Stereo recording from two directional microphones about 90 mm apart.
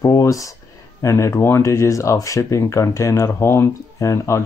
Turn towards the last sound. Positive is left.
turn(degrees=35)  # may be behind; listen again after turning